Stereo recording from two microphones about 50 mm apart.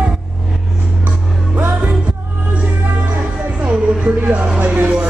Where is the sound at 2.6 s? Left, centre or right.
Right.